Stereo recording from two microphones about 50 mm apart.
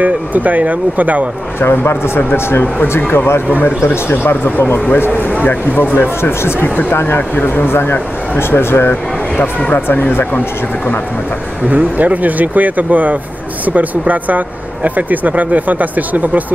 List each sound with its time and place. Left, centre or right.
0.0 s speech: right
1.6 s speech: left
3.6 s speech: left
9.4 s speech: left
9.8 s speech: left
11.7 s speech: right